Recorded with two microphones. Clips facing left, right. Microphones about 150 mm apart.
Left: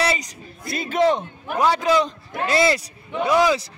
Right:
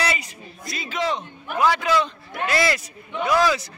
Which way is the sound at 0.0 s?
30° left (ahead or behind).